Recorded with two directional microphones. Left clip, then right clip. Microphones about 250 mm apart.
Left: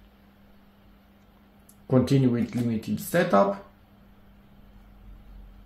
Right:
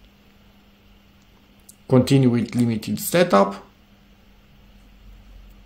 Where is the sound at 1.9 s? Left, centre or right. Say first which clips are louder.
Right 5 dB; right.